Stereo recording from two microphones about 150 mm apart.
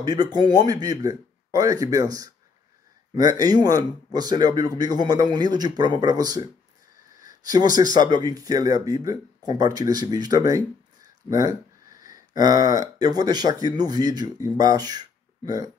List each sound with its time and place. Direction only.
0.0 s speech: 25° right (ahead or behind)
7.2 s a sound: 60° left (ahead or behind)
8.0 s speech: 25° right (ahead or behind)
12.7 s speech: 25° right (ahead or behind)